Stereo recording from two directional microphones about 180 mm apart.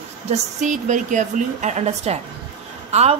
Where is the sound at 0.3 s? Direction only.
40° right (ahead or behind).